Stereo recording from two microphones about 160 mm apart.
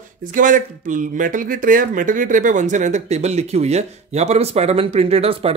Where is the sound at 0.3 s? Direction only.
55° right (ahead or behind).